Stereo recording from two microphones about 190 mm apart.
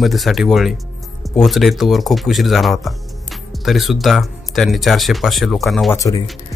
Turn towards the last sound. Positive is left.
turn(degrees=15)  # may be behind; listen again after turning